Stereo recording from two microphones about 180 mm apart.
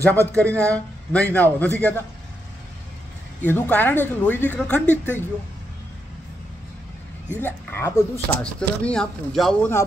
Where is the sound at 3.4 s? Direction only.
10° left (ahead or behind).